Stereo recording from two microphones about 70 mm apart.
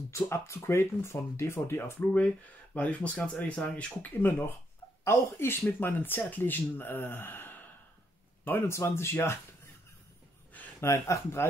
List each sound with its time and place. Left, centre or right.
0.1 s speech: left
2.0 s speech: centre
4.2 s speech: left
10.8 s speech: left